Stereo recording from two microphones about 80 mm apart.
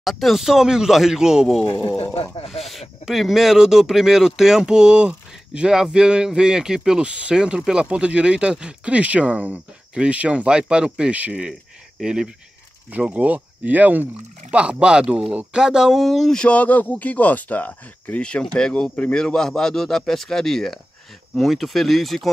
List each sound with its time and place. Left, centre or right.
0.0 s speech: centre
1.9 s speech: left
2.6 s speech: centre